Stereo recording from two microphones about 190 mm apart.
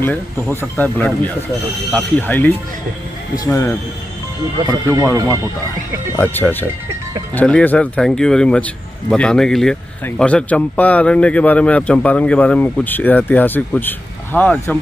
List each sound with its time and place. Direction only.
0.0 s a man's voice: 10° left (ahead or behind)
4.8 s speech: 15° right (ahead or behind)
6.1 s a man's voice: 10° left (ahead or behind)